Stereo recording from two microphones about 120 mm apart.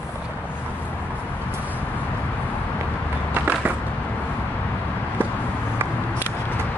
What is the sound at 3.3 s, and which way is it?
Skateboard, 15° right (ahead or behind).